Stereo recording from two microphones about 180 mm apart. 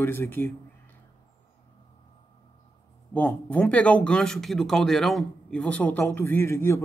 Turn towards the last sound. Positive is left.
turn(degrees=15)  # may be behind; listen again after turning